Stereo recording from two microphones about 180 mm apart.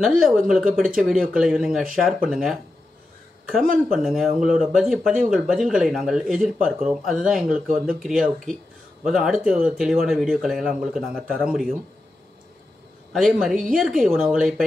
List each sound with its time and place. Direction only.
0.0 s speech: 5° right (ahead or behind)
13.1 s speech: centre (ahead or behind)